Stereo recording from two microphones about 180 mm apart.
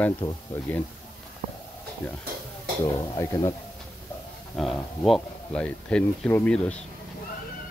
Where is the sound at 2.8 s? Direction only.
20° left (ahead or behind).